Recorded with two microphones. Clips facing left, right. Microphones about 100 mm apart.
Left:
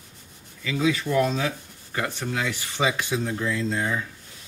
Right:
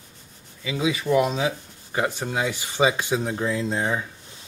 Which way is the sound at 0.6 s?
15° right (ahead or behind).